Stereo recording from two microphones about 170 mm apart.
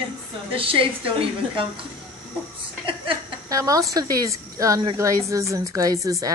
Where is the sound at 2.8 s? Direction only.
30° right (ahead or behind).